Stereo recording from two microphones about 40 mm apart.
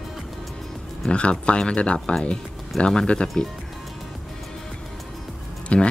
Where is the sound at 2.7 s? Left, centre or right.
Centre.